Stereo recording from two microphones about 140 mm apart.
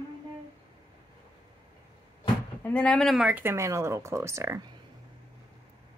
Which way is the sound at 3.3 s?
15° right (ahead or behind).